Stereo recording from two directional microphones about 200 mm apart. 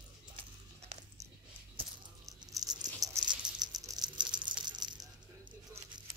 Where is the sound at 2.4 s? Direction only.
20° right (ahead or behind).